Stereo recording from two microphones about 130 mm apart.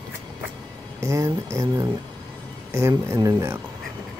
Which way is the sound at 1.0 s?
25° right (ahead or behind).